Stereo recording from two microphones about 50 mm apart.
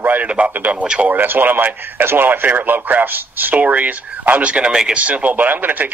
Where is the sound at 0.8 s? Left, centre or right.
Right.